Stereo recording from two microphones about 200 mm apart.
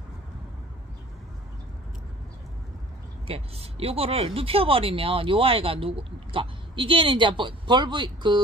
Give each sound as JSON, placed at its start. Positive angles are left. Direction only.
{"t": 3.3, "sound": "speech", "side_deg": -30}